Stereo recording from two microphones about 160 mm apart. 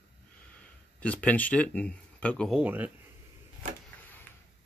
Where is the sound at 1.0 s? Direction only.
10° left (ahead or behind).